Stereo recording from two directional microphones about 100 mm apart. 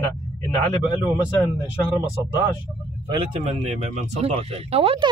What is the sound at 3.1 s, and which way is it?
Speech, 75° right (ahead or behind).